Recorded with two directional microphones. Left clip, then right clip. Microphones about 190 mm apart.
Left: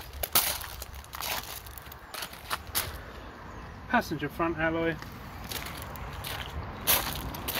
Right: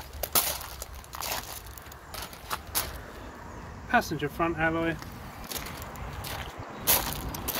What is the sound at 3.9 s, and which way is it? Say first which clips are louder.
Speech: right 2 dB; 20° left (ahead or behind).